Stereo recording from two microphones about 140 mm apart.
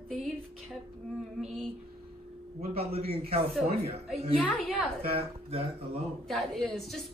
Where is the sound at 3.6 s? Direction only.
45° right (ahead or behind).